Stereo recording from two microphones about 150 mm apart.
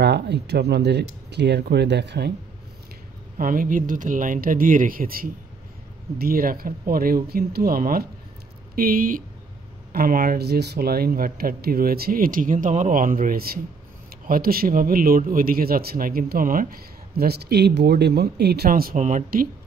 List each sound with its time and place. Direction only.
0.0 s speech: 90° right
3.3 s a man's voice: 65° right (ahead or behind)